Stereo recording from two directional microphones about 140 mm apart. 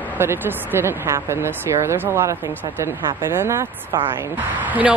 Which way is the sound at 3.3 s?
20° right (ahead or behind).